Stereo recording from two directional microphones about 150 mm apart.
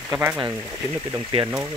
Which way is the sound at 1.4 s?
20° right (ahead or behind).